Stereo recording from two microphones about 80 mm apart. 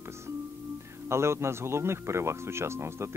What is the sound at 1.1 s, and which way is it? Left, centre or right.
Speech, right.